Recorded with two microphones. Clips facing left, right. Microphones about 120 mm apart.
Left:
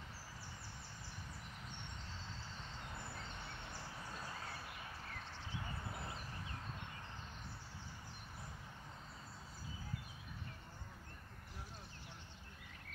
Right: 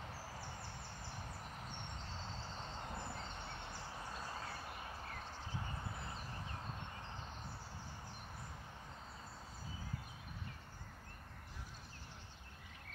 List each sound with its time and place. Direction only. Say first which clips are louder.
4.6 s horse: right 3 dB; 40° right (ahead or behind)